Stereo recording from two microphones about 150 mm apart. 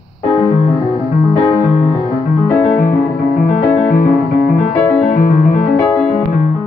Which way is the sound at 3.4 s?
55° left (ahead or behind).